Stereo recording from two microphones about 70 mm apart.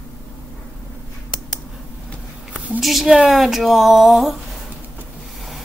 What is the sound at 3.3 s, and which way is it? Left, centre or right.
Speech, centre.